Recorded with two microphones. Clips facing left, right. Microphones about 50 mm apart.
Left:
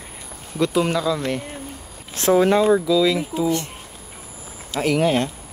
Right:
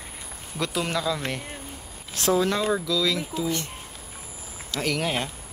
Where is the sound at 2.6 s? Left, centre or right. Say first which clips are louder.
Left 8 dB; centre.